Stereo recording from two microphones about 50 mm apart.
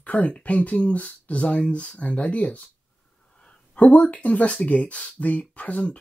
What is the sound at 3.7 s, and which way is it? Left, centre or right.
Speech, left.